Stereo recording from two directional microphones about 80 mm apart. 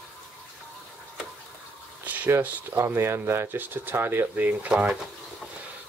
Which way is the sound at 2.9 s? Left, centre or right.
Right.